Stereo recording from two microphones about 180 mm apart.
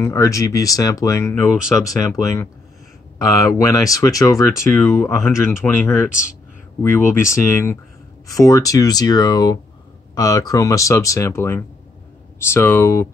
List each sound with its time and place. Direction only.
0.0 s speech: 15° left (ahead or behind)
1.5 s speech: centre (ahead or behind)
1.9 s speech: 20° left (ahead or behind)
4.6 s speech: centre (ahead or behind)
4.9 s speech: 15° left (ahead or behind)
7.2 s speech: 15° left (ahead or behind)